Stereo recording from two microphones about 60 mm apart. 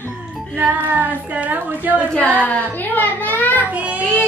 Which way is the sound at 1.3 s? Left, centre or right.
Right.